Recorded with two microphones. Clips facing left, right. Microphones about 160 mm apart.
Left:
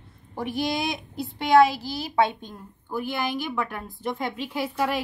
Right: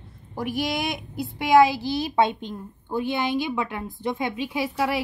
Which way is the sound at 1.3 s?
15° right (ahead or behind).